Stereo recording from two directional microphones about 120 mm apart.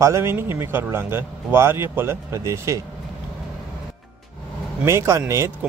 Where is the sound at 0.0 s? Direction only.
20° right (ahead or behind).